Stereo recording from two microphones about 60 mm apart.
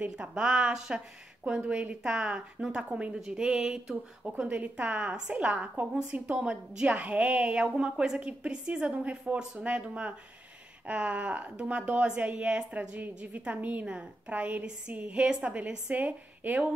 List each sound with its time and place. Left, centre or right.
0.1 s a woman's voice: centre